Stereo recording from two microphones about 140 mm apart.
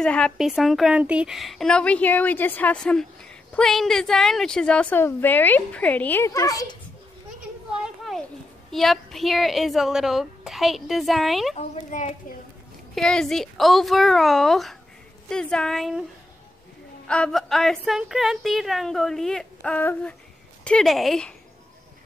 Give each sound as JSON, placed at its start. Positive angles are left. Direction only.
{"t": 0.0, "sound": "a woman's voice", "side_deg": 5}
{"t": 7.7, "sound": "a sound", "side_deg": -5}
{"t": 8.7, "sound": "a woman's voice", "side_deg": 0}
{"t": 11.5, "sound": "a woman's voice", "side_deg": 55}
{"t": 12.9, "sound": "a woman's voice", "side_deg": 5}
{"t": 17.1, "sound": "a woman's voice", "side_deg": 5}